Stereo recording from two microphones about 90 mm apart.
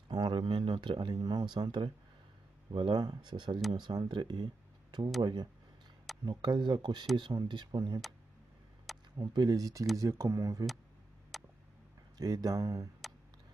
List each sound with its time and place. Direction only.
0.1 s speech: 60° right (ahead or behind)
5.2 s speech: 55° right (ahead or behind)
8.9 s a sound: centre (ahead or behind)
9.2 s speech: 50° right (ahead or behind)
11.3 s tick: centre (ahead or behind)
12.2 s speech: 45° right (ahead or behind)